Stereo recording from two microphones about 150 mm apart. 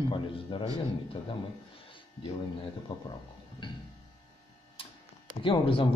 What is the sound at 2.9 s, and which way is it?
Speech, 35° left (ahead or behind).